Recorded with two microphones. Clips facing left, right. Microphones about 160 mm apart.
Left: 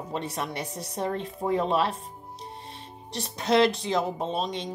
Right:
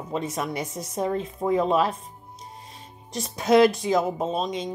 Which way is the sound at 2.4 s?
30° left (ahead or behind).